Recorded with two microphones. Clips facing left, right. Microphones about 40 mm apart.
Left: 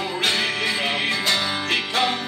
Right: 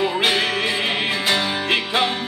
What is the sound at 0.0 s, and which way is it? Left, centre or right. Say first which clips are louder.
Music: right 4 dB; centre.